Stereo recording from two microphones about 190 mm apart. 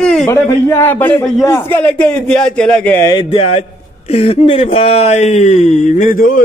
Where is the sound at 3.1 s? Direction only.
30° left (ahead or behind); by 6.4 s 45° left (ahead or behind).